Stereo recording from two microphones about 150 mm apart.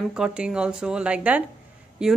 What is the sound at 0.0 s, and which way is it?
A woman's voice, 5° right (ahead or behind).